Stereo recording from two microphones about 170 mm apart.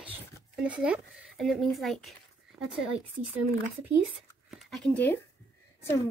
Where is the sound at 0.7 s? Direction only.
5° right (ahead or behind).